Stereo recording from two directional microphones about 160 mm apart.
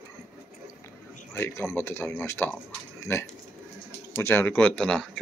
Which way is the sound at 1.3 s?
15° left (ahead or behind).